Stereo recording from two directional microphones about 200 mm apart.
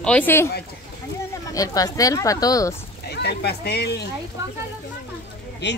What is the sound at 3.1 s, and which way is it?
Speech, 55° left (ahead or behind).